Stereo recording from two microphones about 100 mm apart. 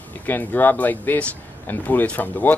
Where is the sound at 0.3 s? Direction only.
15° left (ahead or behind).